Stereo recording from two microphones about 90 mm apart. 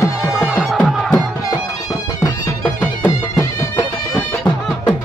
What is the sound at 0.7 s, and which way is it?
Music, 5° right (ahead or behind).